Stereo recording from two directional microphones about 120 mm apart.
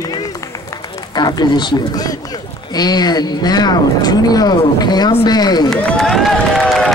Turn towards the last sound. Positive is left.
turn(degrees=0)  # may be behind; listen again after turning